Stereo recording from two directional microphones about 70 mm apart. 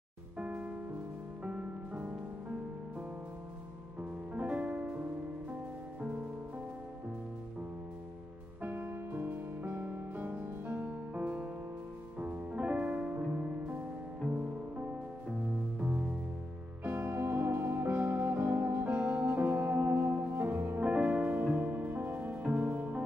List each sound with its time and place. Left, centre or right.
0.4 s music: centre
4.0 s music: centre
8.6 s music: right
16.8 s music: right
20.8 s music: centre